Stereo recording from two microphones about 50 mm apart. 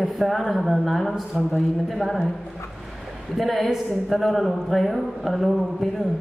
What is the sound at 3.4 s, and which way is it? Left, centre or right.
A woman's voice, centre.